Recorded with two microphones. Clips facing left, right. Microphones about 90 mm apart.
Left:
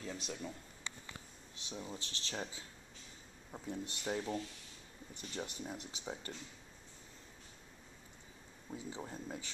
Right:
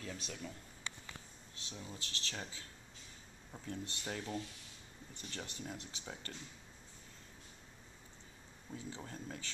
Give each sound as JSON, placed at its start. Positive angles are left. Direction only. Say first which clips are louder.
{"t": 0.0, "sound": "speech", "louder": "left 2 dB", "side_deg": 15}
{"t": 1.7, "sound": "speech", "louder": "left 3 dB", "side_deg": 25}
{"t": 8.6, "sound": "speech", "louder": "left 2 dB", "side_deg": 15}